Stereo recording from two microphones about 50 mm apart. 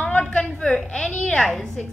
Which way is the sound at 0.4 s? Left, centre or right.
Centre.